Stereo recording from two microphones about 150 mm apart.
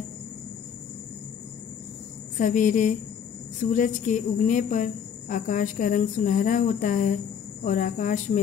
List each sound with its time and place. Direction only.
2.3 s a woman's voice: 60° left (ahead or behind)